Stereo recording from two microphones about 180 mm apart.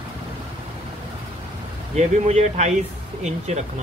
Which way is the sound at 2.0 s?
40° right (ahead or behind).